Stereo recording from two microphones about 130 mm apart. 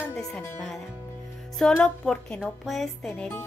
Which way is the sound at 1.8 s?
5° left (ahead or behind).